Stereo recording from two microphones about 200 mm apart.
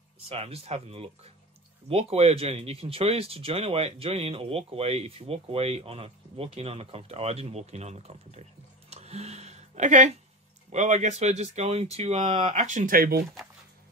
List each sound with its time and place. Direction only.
0.3 s speech: 30° right (ahead or behind)
8.9 s a sound: 30° right (ahead or behind)
10.7 s speech: 35° right (ahead or behind)